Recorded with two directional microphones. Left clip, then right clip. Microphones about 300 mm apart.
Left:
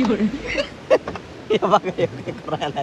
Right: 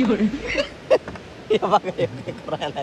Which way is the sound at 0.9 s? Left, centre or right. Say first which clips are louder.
Left 2 dB; centre.